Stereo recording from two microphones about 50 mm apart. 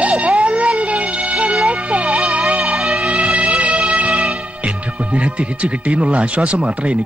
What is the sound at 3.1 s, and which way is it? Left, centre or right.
Music, right.